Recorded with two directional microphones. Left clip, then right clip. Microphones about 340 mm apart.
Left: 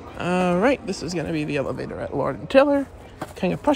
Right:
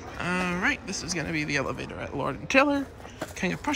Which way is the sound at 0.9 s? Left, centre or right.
Left.